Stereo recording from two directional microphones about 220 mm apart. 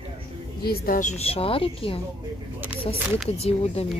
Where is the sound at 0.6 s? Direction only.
45° left (ahead or behind); by 2.0 s 25° left (ahead or behind).